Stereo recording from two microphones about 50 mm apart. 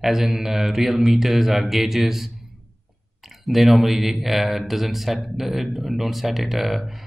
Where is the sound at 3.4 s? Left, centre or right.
Centre.